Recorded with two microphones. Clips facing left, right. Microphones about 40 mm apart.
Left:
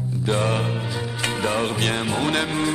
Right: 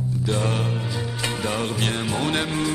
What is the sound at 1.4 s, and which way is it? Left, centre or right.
Music, left.